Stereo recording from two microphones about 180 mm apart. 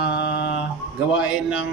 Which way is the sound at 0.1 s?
65° left (ahead or behind).